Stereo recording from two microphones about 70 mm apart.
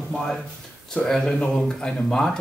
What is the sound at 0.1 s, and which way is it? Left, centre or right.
Speech, centre.